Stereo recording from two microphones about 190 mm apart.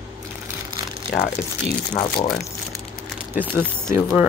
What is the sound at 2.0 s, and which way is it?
Speech, 25° left (ahead or behind).